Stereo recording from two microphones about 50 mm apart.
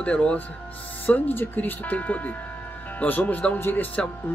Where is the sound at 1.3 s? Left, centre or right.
Left.